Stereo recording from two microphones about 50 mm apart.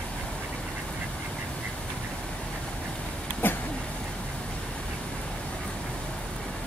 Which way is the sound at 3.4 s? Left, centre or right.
Left.